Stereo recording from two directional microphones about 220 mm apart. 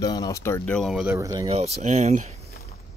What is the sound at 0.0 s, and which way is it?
Speech, 15° left (ahead or behind).